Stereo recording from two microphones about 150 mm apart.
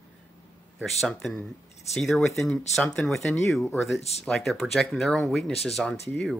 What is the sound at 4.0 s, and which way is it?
Speech, 45° left (ahead or behind).